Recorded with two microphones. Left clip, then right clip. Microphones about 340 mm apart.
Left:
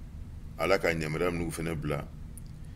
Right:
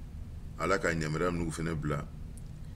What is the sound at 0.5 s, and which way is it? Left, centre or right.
A man's voice, centre.